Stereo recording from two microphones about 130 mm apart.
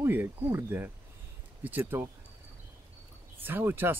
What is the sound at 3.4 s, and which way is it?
Speech, 15° right (ahead or behind).